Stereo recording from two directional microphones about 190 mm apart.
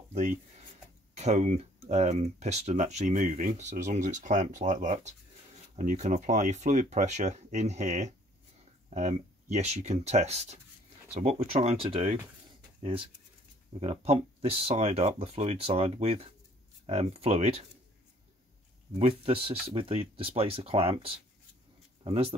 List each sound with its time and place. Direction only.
1.1 s speech: 35° right (ahead or behind)
18.9 s speech: 30° right (ahead or behind)
22.0 s speech: 30° right (ahead or behind)